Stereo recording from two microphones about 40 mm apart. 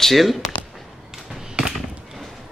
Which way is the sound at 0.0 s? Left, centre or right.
Centre.